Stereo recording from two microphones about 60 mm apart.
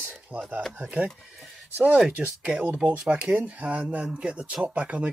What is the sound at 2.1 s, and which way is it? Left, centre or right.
Speech, centre.